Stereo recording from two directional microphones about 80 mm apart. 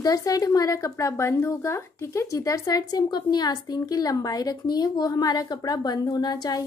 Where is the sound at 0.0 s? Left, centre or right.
Left.